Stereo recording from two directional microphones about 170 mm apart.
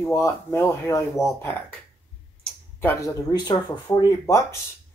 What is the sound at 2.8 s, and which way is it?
Speech, 20° left (ahead or behind).